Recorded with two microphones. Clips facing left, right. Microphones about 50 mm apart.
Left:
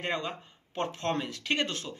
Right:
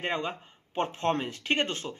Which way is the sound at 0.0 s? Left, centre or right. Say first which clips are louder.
Right 2 dB; right.